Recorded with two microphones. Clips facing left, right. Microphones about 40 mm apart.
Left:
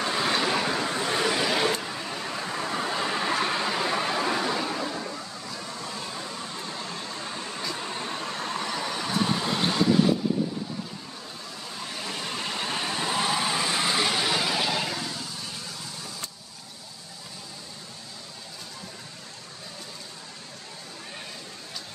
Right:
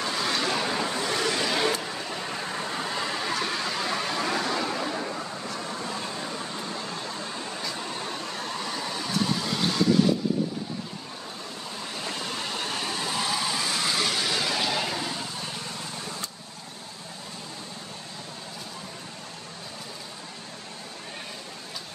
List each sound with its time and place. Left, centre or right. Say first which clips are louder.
0.0 s vehicle: left 2 dB; centre
1.0 s vehicle: left 3 dB; centre
2.6 s a sound: left 4 dB; centre
4.9 s a sound: right 2 dB; centre
6.7 s vehicle: right 1 dB; centre
12.3 s vehicle: left 1 dB; centre